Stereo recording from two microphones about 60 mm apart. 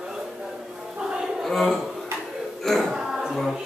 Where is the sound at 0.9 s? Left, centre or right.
Centre.